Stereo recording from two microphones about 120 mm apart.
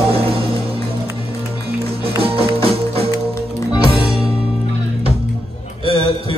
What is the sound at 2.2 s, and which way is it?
Music, 50° right (ahead or behind).